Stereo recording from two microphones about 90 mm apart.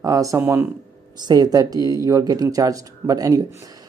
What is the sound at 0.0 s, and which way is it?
Speech, 40° right (ahead or behind).